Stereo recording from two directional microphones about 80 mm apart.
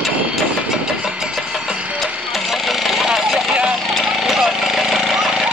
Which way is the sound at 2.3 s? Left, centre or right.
Centre.